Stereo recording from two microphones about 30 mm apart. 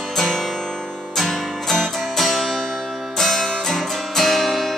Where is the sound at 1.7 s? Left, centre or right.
Centre.